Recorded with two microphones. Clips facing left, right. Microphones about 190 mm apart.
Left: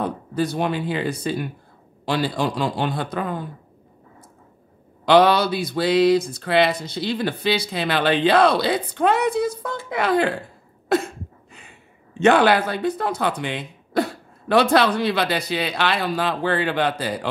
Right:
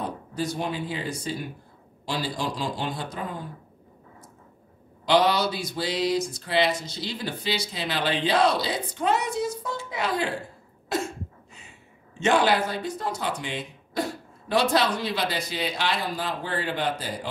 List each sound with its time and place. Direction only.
0.0 s speech: 60° left (ahead or behind)
5.0 s speech: 60° left (ahead or behind)